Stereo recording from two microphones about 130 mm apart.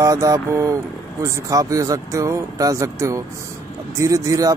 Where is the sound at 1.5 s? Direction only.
25° right (ahead or behind).